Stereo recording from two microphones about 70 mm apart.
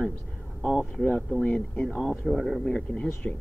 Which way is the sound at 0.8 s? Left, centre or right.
Centre.